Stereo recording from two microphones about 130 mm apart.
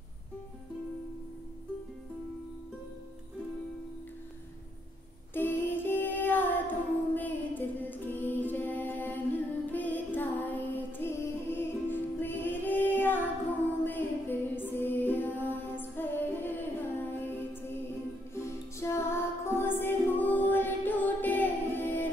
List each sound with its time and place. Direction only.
5.3 s music: 15° left (ahead or behind)
14.5 s music: 15° left (ahead or behind)